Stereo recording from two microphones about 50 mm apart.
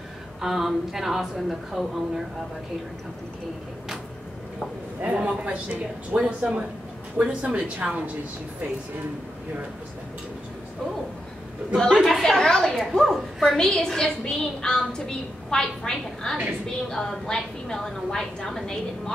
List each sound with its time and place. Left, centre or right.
0.4 s a woman's voice: centre
5.0 s speech: right
6.2 s speech: centre
12.0 s a woman's voice: centre